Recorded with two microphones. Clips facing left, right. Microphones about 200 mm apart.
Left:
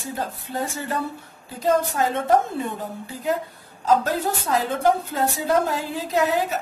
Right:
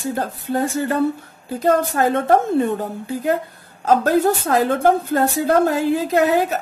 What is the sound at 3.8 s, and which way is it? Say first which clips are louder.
A woman's voice: right 6 dB; 60° right (ahead or behind).